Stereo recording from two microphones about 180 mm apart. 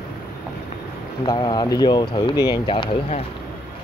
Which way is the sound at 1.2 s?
25° left (ahead or behind).